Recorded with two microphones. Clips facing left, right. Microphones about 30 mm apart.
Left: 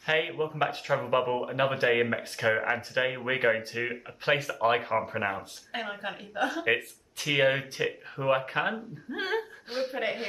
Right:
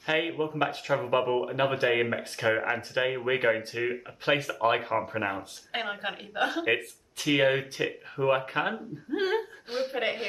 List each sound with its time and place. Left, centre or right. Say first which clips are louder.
0.0 s speech: even; centre
5.7 s speech: right 2 dB; right
6.6 s speech: even; centre